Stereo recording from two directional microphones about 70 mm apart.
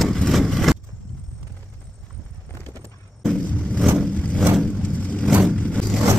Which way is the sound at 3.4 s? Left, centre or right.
Centre.